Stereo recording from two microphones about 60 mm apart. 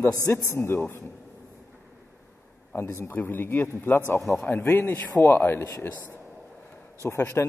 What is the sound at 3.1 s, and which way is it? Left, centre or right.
A man's voice, left.